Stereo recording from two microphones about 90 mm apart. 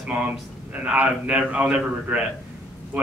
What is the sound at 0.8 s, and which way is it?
A man's voice, 15° right (ahead or behind).